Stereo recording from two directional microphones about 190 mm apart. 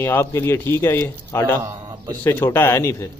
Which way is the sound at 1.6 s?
15° right (ahead or behind).